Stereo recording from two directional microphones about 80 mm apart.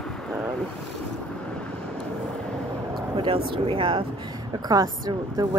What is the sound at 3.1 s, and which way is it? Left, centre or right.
Speech, right.